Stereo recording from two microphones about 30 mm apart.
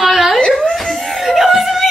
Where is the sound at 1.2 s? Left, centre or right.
Centre.